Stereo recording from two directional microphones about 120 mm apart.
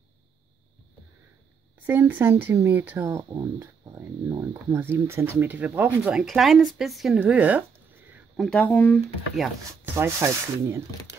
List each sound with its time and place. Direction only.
1.9 s speech: 15° right (ahead or behind)
6.1 s speech: centre (ahead or behind)
8.4 s speech: 10° left (ahead or behind)
8.6 s speech: 25° left (ahead or behind)
8.9 s speech: centre (ahead or behind)
9.9 s speech: 20° right (ahead or behind)